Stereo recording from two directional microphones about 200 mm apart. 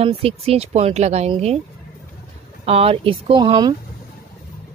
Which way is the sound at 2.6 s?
30° right (ahead or behind).